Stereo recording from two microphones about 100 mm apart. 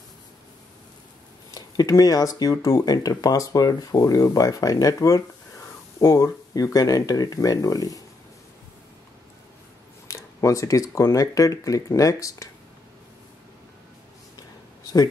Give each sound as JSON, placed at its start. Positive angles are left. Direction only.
{"t": 1.5, "sound": "speech", "side_deg": 40}
{"t": 10.0, "sound": "speech", "side_deg": 30}